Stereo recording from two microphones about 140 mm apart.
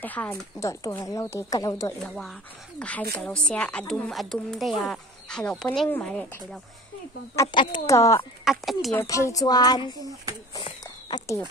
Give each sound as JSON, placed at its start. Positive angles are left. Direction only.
{"t": 0.0, "sound": "a woman's voice", "side_deg": 10}
{"t": 2.0, "sound": "a woman's voice", "side_deg": 5}
{"t": 7.5, "sound": "speech", "side_deg": 35}
{"t": 7.8, "sound": "a woman's voice", "side_deg": 20}
{"t": 8.5, "sound": "a woman's voice", "side_deg": 0}
{"t": 9.0, "sound": "a woman's voice", "side_deg": 25}
{"t": 10.6, "sound": "a sound", "side_deg": 30}